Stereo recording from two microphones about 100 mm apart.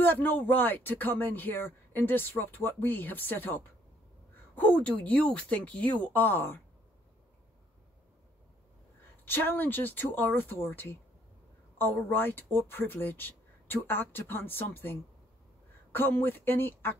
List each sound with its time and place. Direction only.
0.0 s speech: 20° left (ahead or behind)
9.2 s speech: 20° left (ahead or behind)